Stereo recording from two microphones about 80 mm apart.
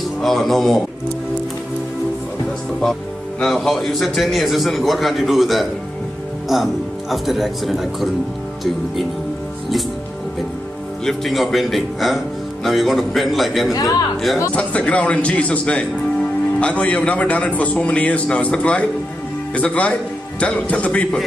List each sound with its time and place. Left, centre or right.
0.2 s a man's voice: centre
2.8 s a man's voice: centre
11.1 s a man's voice: centre
14.5 s a man's voice: centre